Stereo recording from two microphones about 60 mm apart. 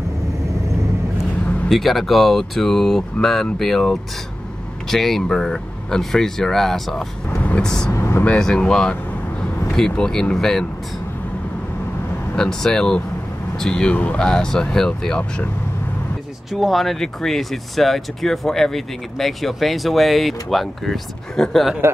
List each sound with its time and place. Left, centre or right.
1.7 s speech: centre
7.3 s vehicle: centre
7.9 s speech: left
8.3 s speech: centre
12.4 s speech: centre
16.5 s speech: centre